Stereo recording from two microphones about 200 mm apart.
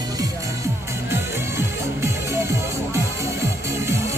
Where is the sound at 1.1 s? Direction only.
15° right (ahead or behind).